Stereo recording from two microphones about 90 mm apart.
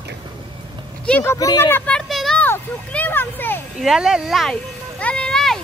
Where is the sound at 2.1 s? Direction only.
Centre (ahead or behind).